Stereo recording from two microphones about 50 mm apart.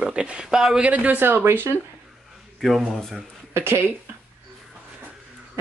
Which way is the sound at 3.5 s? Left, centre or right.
Right.